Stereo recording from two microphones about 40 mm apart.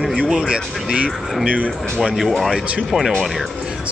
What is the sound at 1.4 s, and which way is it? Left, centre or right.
Speech, right.